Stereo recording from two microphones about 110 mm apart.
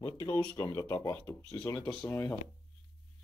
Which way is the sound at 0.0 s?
30° left (ahead or behind).